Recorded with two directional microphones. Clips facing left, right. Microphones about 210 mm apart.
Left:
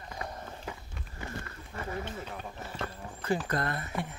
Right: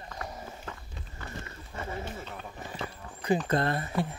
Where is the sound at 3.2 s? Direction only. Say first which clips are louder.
Right 4 dB; 20° right (ahead or behind).